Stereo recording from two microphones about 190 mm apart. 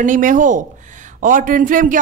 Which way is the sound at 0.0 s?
40° right (ahead or behind).